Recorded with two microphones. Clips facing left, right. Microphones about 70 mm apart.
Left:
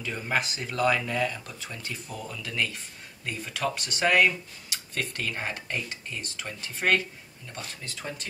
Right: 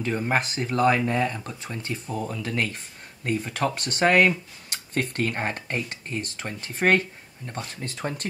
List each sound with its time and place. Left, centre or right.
0.0 s speech: right